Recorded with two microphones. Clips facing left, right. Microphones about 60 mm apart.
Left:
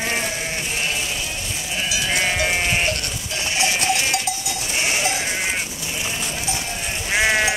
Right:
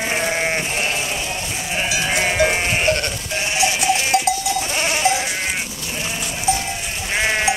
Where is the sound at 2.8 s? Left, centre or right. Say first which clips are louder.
Right 5 dB; right.